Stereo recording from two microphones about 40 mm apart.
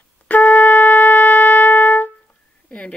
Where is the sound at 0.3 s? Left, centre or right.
Left.